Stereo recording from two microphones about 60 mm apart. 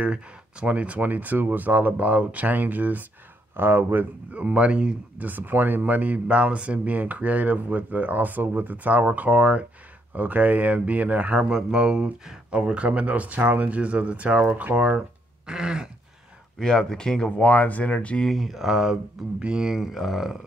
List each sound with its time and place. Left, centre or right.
0.0 s speech: centre; by 4.1 s right
4.3 s speech: right
5.2 s speech: right
11.5 s speech: centre
15.4 s speech: centre
16.5 s speech: centre
17.4 s speech: left
18.2 s speech: centre